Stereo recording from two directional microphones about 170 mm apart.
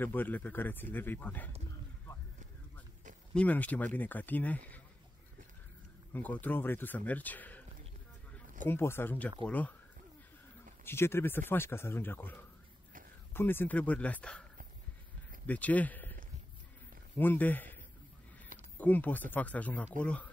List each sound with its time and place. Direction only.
0.0 s speech: 10° left (ahead or behind)
3.3 s speech: 10° left (ahead or behind)
6.1 s speech: 10° left (ahead or behind)
8.6 s speech: 15° left (ahead or behind)
10.9 s speech: 15° left (ahead or behind)
15.4 s speech: 10° left (ahead or behind)
17.2 s speech: 10° left (ahead or behind)
18.8 s speech: 10° left (ahead or behind)